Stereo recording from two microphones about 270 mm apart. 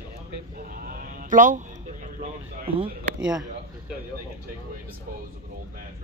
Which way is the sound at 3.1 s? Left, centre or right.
Centre.